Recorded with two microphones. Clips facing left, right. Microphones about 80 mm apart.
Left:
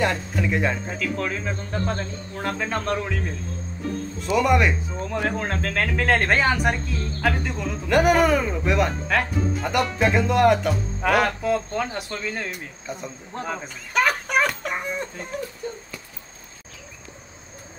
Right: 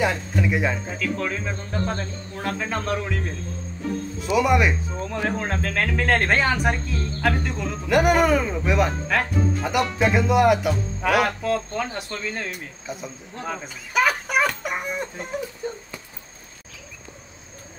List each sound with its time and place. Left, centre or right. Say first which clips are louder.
0.0 s speech: right 1 dB; centre
4.2 s speech: even; centre
12.8 s speech: even; centre
13.9 s chicken: even; centre